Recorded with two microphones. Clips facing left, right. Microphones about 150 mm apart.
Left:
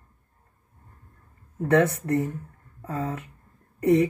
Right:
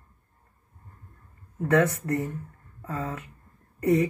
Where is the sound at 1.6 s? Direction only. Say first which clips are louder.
Left 2 dB; 30° left (ahead or behind).